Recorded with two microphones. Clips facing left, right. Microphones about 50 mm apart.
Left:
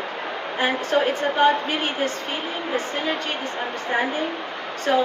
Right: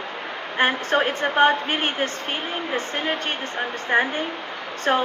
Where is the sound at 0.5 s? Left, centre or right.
Right.